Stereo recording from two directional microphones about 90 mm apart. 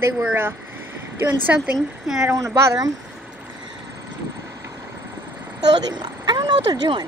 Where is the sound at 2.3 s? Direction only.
35° right (ahead or behind).